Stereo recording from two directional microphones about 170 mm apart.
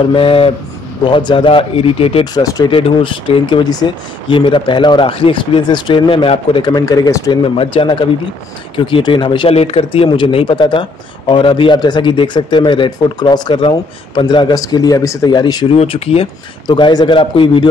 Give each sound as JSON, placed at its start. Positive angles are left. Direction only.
{"t": 0.1, "sound": "speech", "side_deg": 30}
{"t": 2.3, "sound": "speech", "side_deg": 20}
{"t": 7.4, "sound": "speech", "side_deg": 30}
{"t": 15.7, "sound": "speech", "side_deg": 35}